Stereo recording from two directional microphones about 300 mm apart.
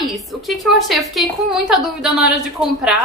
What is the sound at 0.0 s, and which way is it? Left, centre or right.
A woman's voice, centre.